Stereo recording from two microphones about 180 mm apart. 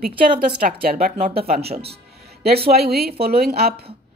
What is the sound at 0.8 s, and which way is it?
Speech, 55° right (ahead or behind).